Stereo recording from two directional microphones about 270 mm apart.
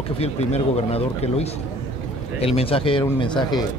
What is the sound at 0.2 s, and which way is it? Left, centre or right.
Speech, left.